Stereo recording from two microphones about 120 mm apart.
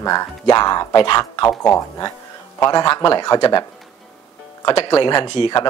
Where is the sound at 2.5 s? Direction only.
30° left (ahead or behind).